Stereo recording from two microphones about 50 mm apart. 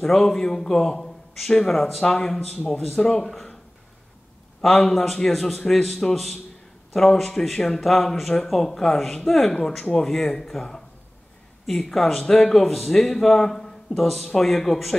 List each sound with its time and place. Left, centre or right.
0.0 s speech: centre
4.6 s a man's voice: centre